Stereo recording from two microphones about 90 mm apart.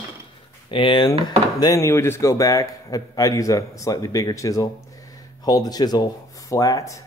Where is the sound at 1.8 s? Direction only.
30° left (ahead or behind).